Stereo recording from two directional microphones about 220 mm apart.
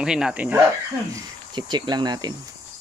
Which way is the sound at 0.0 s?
5° right (ahead or behind).